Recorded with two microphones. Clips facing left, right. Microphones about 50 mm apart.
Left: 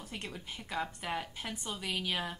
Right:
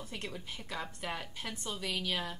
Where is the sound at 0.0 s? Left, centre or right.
Centre.